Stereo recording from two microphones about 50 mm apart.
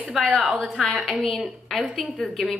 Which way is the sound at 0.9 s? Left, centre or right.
Centre.